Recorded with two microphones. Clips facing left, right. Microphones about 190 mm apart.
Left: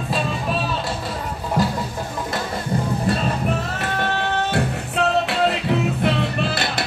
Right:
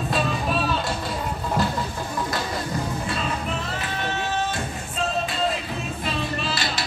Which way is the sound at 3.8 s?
65° left (ahead or behind).